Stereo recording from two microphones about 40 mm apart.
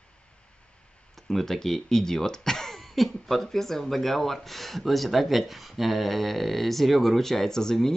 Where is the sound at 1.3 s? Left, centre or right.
Centre.